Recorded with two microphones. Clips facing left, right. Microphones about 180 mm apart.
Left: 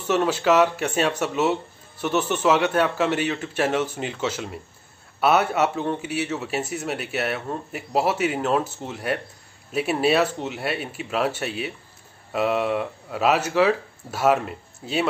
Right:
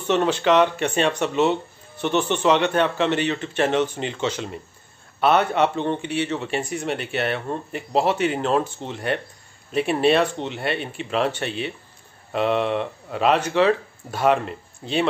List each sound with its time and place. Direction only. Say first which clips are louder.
0.0 s a man's voice: right 1 dB; 5° left (ahead or behind)